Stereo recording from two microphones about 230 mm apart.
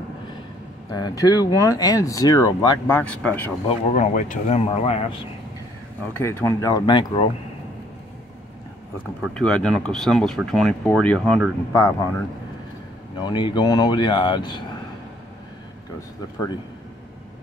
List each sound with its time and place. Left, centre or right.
0.8 s speech: centre
3.6 s speech: left
6.1 s speech: centre
9.2 s speech: centre
11.7 s speech: centre
13.2 s speech: centre